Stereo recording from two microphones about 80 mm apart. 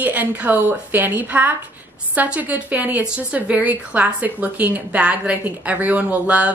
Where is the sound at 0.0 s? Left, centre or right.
Right.